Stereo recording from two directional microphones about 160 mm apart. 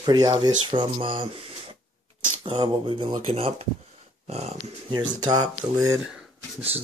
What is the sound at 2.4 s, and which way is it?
Speech, 30° right (ahead or behind).